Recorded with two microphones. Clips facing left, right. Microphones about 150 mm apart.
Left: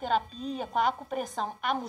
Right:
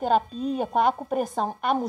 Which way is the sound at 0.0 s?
45° right (ahead or behind).